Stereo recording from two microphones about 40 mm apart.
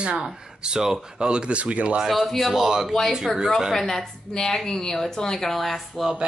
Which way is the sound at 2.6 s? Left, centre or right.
Centre.